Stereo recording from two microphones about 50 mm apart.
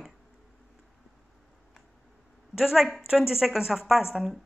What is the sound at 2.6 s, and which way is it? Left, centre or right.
A woman's voice, centre.